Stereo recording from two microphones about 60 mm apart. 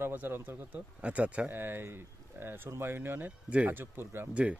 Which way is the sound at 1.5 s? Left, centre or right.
Right.